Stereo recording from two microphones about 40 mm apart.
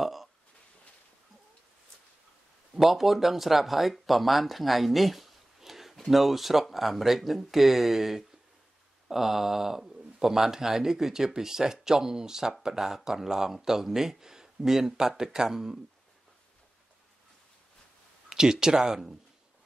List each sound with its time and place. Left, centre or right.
0.0 s a sound: centre
2.8 s speech: centre
18.3 s speech: centre